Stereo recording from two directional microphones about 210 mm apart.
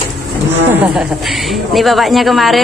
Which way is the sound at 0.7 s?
Centre (ahead or behind).